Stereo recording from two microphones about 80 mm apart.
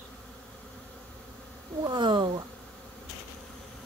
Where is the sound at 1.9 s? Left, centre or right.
Right.